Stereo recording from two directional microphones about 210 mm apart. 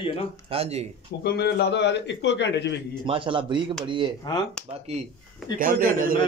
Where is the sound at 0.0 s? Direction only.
25° left (ahead or behind).